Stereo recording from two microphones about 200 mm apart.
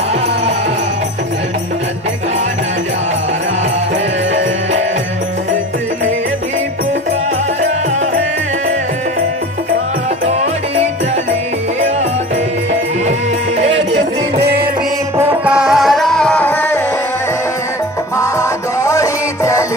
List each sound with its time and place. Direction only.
14.4 s music: 55° right (ahead or behind)
15.1 s music: 10° right (ahead or behind); by 16.8 s 10° left (ahead or behind)
18.1 s music: 15° left (ahead or behind)